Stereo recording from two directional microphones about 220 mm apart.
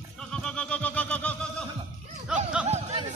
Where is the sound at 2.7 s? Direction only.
30° right (ahead or behind).